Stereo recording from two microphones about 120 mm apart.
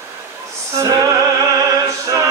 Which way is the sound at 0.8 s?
25° right (ahead or behind).